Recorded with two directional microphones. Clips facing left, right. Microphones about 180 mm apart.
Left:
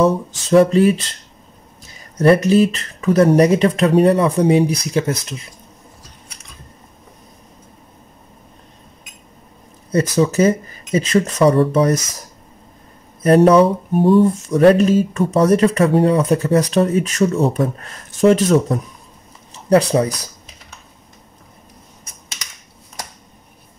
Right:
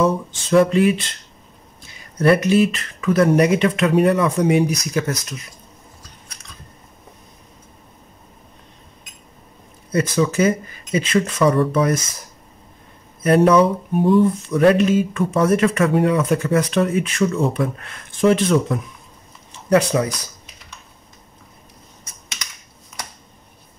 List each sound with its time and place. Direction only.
0.0 s speech: 35° left (ahead or behind)
9.9 s speech: 35° left (ahead or behind)
13.2 s speech: 35° left (ahead or behind)
19.7 s speech: 30° left (ahead or behind)